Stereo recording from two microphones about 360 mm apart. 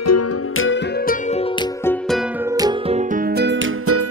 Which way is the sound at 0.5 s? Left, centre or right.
Left.